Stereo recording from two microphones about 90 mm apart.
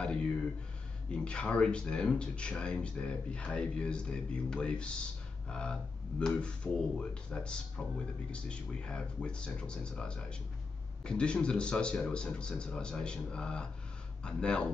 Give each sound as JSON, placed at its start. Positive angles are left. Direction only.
{"t": 1.1, "sound": "speech", "side_deg": 10}